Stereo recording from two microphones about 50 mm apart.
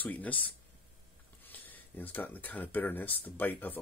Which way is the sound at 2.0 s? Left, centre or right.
Left.